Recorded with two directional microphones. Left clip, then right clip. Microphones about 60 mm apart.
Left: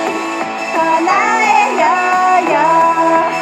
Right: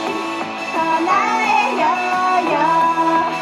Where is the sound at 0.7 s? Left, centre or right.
Left.